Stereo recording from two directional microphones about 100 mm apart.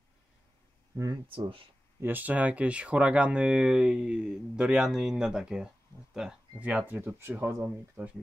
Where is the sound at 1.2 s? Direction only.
60° right (ahead or behind).